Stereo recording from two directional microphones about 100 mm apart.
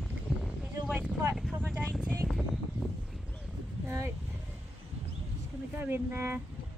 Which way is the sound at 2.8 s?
5° left (ahead or behind).